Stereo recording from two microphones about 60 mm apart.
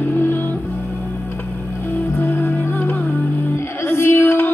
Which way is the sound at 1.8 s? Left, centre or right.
Left.